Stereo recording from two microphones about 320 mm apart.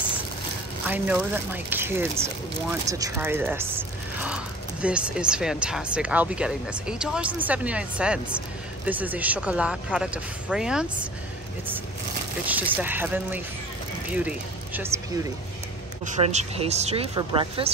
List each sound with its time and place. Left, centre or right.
0.8 s speech: centre
4.8 s speech: centre
12.4 s speech: centre
16.1 s speech: right